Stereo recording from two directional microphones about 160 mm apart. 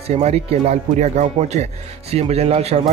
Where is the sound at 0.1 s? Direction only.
40° right (ahead or behind).